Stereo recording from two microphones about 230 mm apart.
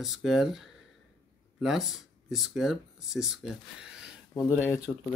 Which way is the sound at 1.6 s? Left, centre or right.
Centre.